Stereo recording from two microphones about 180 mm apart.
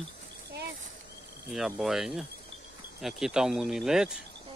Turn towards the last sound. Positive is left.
turn(degrees=-5)  # may be behind; listen again after turning